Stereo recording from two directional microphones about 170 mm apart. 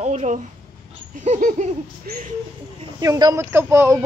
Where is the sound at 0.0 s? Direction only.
40° right (ahead or behind).